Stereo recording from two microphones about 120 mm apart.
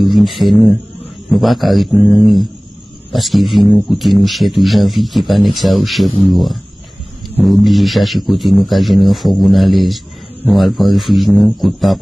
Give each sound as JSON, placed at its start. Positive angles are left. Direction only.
{"t": 0.0, "sound": "speech", "side_deg": 0}